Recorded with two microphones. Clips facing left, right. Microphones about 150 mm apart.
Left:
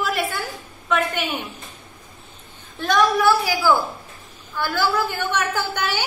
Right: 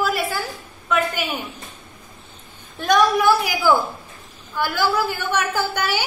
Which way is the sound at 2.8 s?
15° right (ahead or behind).